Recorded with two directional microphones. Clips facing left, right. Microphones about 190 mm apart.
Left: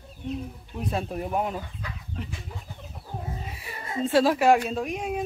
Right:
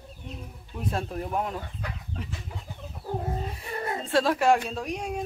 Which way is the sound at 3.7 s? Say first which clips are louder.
Right 7 dB; 65° right (ahead or behind).